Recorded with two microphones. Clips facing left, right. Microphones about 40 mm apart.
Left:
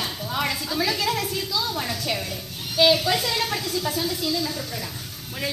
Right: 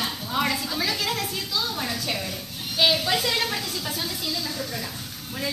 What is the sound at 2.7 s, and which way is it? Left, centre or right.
Speech, centre.